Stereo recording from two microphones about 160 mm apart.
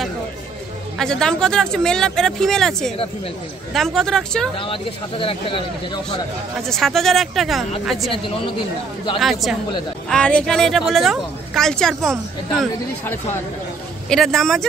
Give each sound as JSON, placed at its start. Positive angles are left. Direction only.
{"t": 0.9, "sound": "a woman's voice", "side_deg": 5}
{"t": 5.2, "sound": "speech", "side_deg": 35}
{"t": 6.6, "sound": "a woman's voice", "side_deg": 0}
{"t": 9.2, "sound": "a woman's voice", "side_deg": 0}
{"t": 14.0, "sound": "a woman's voice", "side_deg": 5}